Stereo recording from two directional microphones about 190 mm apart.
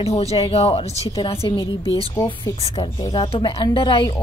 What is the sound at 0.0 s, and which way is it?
A woman's voice, 35° left (ahead or behind).